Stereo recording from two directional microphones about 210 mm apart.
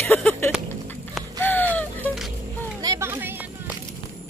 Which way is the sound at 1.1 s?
10° left (ahead or behind).